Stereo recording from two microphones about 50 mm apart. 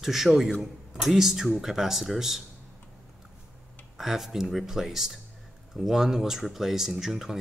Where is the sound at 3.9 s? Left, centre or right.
Centre.